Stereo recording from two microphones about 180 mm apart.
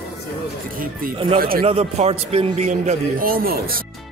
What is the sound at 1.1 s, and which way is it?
A man's voice, 30° right (ahead or behind).